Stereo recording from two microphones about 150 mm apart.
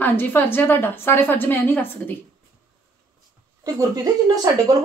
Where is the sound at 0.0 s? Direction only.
15° left (ahead or behind).